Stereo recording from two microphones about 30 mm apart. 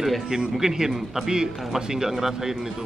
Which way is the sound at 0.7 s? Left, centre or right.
Right.